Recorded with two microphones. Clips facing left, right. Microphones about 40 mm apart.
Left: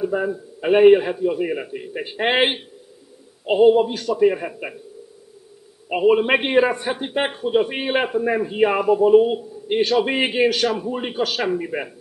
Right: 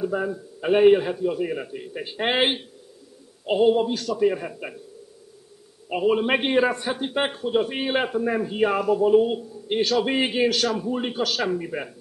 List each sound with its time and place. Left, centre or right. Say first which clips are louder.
0.0 s a man's voice: left 3 dB; centre
5.9 s a man's voice: left 5 dB; left